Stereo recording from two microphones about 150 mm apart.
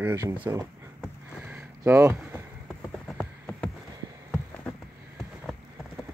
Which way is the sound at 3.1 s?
10° left (ahead or behind).